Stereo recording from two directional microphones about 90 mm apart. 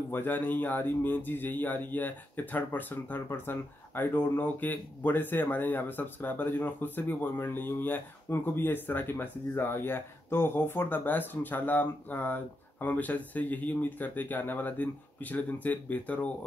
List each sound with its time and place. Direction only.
0.1 s speech: 20° left (ahead or behind)